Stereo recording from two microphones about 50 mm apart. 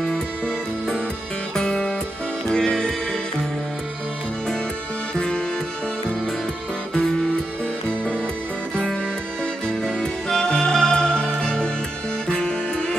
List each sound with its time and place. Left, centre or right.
1.5 s music: centre
6.9 s music: centre
9.8 s music: centre